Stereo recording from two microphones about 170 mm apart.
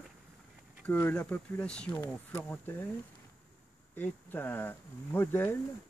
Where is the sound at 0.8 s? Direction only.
10° left (ahead or behind).